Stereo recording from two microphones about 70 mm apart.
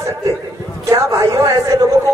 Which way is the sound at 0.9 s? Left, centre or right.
Right.